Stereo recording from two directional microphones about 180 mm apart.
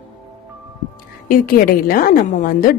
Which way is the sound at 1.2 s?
50° left (ahead or behind).